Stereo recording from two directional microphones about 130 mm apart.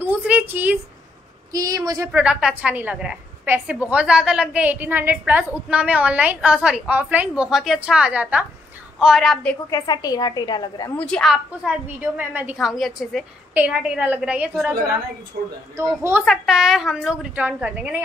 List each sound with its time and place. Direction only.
0.0 s a sound: 10° right (ahead or behind)
1.5 s a woman's voice: 25° right (ahead or behind)
2.1 s a woman's voice: 5° right (ahead or behind)
9.7 s a woman's voice: 30° left (ahead or behind)
11.0 s a woman's voice: 5° left (ahead or behind)
11.3 s a woman's voice: 10° right (ahead or behind)
12.5 s a woman's voice: centre (ahead or behind)
15.7 s a woman's voice: 20° right (ahead or behind)
16.3 s a woman's voice: 5° right (ahead or behind)